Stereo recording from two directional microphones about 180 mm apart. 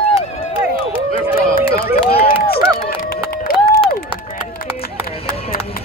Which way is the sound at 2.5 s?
55° left (ahead or behind).